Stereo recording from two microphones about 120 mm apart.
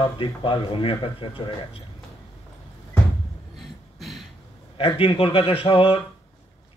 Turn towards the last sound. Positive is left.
turn(degrees=50)  # may be behind; listen again after turning